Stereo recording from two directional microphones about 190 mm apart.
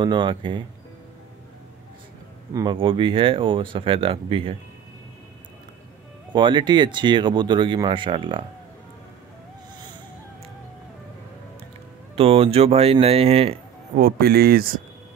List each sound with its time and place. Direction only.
0.0 s speech: 25° right (ahead or behind)
2.5 s speech: 25° right (ahead or behind)
6.3 s speech: 25° right (ahead or behind)
12.2 s speech: 30° right (ahead or behind)
13.9 s speech: 55° right (ahead or behind)